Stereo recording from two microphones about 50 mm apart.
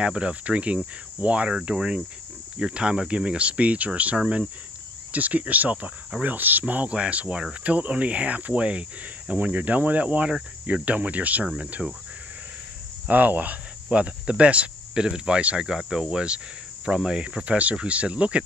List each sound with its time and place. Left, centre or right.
0.0 s cricket: right
13.1 s cricket: right